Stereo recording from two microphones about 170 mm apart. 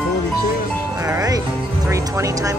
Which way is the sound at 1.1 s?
20° right (ahead or behind).